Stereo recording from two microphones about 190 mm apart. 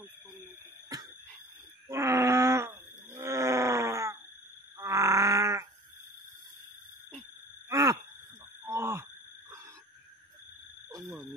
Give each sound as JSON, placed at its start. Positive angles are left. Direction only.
{"t": 0.9, "sound": "cough", "side_deg": -20}
{"t": 1.9, "sound": "groan", "side_deg": -15}
{"t": 7.7, "sound": "groan", "side_deg": -15}